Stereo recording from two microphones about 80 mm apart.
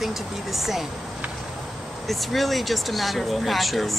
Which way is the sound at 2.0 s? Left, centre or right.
Centre.